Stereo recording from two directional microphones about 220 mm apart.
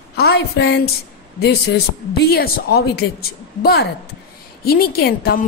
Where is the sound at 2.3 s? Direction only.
45° left (ahead or behind).